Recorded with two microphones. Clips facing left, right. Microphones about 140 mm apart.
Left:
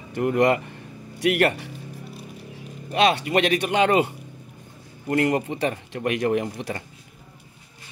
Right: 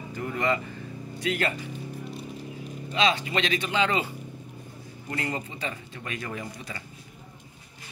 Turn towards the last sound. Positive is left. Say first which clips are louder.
# left 12 dB
turn(degrees=65)  # may be behind; listen again after turning